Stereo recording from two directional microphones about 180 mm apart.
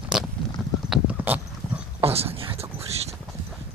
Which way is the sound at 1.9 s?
35° right (ahead or behind).